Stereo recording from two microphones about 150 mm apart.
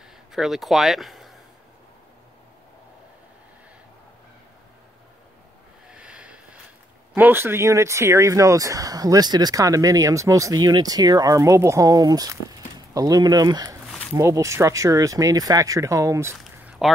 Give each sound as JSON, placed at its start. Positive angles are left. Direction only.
{"t": 0.3, "sound": "speech", "side_deg": 0}
{"t": 5.9, "sound": "snort", "side_deg": -5}
{"t": 7.2, "sound": "speech", "side_deg": -15}
{"t": 16.3, "sound": "a sound", "side_deg": -5}